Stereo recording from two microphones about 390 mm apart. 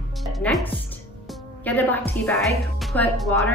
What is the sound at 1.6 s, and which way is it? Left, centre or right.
A woman's voice, centre.